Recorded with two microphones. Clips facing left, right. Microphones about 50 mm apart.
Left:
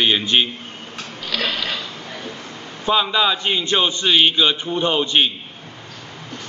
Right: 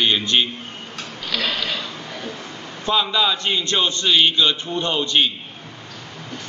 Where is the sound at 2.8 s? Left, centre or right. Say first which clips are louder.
Left 2 dB; centre.